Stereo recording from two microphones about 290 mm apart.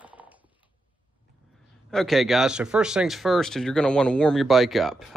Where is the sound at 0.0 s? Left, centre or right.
Centre.